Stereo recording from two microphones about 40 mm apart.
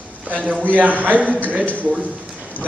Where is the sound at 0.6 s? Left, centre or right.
Right.